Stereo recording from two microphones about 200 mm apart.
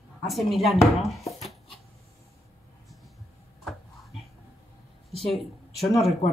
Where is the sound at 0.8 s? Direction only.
30° left (ahead or behind).